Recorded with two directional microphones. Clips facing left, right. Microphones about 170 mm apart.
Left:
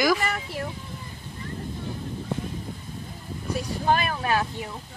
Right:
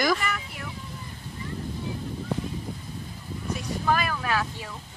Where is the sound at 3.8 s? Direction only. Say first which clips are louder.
Left 2 dB; 30° left (ahead or behind).